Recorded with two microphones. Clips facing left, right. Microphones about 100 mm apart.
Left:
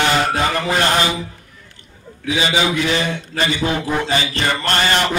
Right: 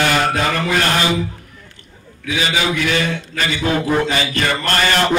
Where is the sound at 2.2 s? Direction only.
30° left (ahead or behind).